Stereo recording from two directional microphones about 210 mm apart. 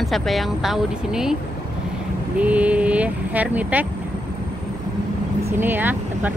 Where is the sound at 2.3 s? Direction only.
5° right (ahead or behind).